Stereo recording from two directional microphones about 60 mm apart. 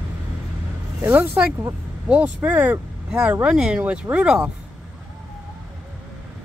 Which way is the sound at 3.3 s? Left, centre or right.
Right.